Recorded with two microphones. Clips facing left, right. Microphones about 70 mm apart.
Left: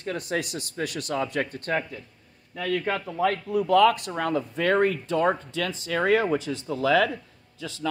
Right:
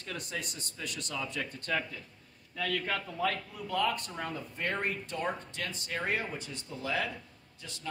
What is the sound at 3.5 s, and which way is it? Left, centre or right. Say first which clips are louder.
Speech: left 13 dB; left.